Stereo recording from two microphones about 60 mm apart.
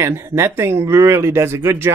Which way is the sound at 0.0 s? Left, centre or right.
Right.